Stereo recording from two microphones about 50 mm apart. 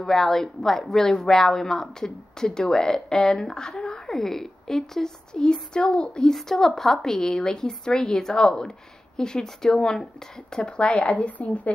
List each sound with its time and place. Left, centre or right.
0.0 s a woman's voice: centre
6.3 s a woman's voice: centre; by 11.7 s left